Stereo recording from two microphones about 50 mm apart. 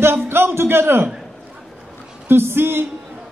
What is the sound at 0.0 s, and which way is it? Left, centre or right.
A man's voice, right.